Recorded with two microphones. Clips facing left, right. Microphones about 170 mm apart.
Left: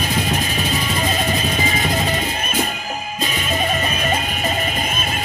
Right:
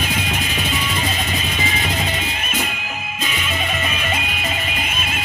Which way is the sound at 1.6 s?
40° left (ahead or behind).